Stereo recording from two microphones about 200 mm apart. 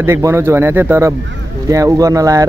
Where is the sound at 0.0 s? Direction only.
15° right (ahead or behind).